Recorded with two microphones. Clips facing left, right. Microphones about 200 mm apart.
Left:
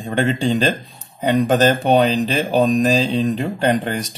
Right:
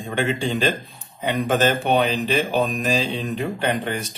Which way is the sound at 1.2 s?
40° left (ahead or behind).